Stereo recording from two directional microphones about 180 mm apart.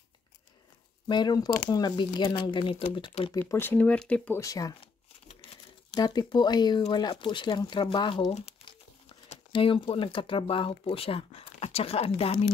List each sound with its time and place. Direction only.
1.0 s speech: 25° left (ahead or behind)
3.3 s speech: 10° left (ahead or behind)
4.4 s speech: 20° left (ahead or behind)
5.9 s speech: 25° left (ahead or behind)